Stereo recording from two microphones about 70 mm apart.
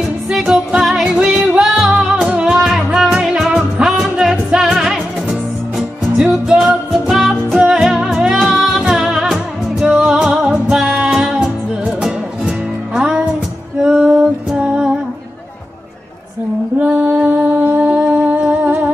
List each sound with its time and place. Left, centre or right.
0.3 s music: centre
16.8 s music: centre